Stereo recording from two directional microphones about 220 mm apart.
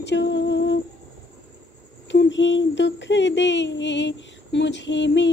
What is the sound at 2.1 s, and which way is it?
Speech, 55° left (ahead or behind).